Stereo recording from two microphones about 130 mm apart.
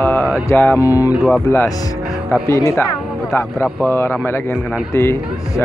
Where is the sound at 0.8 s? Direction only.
25° left (ahead or behind).